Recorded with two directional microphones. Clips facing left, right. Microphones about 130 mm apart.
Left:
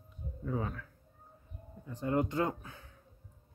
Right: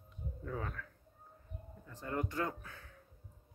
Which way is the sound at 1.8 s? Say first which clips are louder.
Left 8 dB; 20° left (ahead or behind).